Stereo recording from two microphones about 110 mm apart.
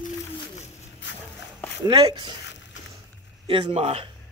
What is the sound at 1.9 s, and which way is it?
Speech, 40° right (ahead or behind).